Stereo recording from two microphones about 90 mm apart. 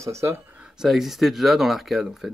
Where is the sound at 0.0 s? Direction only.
30° right (ahead or behind).